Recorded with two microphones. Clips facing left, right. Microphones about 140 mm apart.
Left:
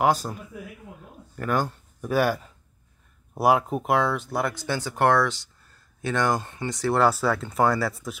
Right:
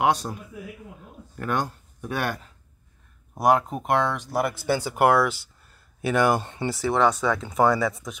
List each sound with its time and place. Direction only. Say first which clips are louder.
0.0 s speech: even; centre (ahead or behind)
6.4 s speech: right 3 dB; 20° right (ahead or behind)
6.7 s speech: even; centre (ahead or behind)